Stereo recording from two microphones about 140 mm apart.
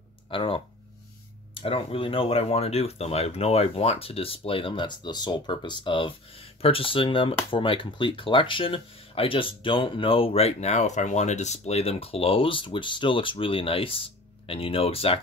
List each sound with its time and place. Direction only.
0.3 s speech: 40° left (ahead or behind)